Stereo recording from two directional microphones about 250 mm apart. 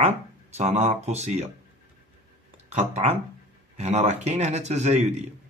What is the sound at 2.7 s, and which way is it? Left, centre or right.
A man's voice, right.